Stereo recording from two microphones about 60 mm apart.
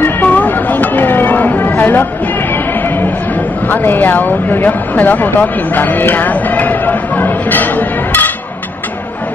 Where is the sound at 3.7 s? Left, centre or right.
Left.